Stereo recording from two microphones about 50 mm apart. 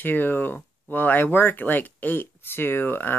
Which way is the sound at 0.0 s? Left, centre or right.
Left.